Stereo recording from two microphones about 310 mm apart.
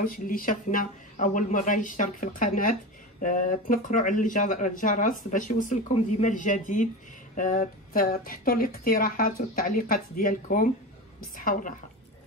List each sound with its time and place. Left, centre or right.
0.0 s a man's voice: left